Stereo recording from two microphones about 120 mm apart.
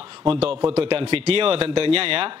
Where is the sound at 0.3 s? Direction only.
50° right (ahead or behind).